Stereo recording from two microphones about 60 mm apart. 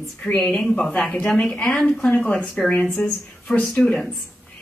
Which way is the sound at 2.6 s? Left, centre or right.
Left.